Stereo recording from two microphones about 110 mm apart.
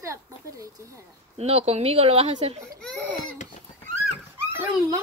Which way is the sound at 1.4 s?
65° right (ahead or behind).